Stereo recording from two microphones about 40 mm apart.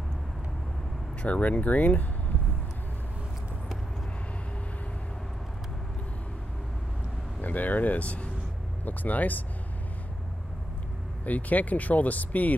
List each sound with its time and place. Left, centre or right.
1.2 s speech: left
7.4 s speech: left
8.8 s speech: left
11.2 s speech: left